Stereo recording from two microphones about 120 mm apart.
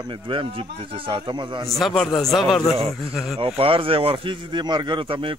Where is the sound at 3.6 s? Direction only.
50° right (ahead or behind).